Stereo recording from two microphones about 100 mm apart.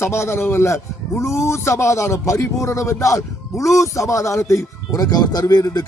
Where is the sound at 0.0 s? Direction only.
25° left (ahead or behind).